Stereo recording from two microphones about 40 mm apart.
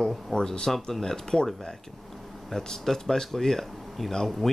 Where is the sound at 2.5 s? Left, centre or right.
Centre.